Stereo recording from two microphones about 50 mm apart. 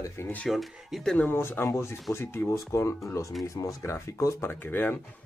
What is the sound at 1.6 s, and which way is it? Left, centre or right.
Speech, left.